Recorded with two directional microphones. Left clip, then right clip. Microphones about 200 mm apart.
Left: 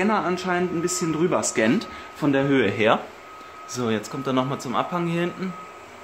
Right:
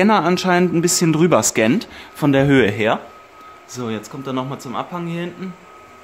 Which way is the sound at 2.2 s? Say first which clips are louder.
Right 6 dB; 45° right (ahead or behind).